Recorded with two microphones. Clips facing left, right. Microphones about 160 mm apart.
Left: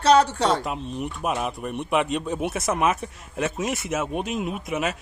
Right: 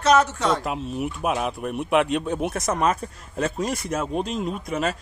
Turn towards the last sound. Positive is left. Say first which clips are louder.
# right 1 dB
turn(degrees=5)  # may be behind; listen again after turning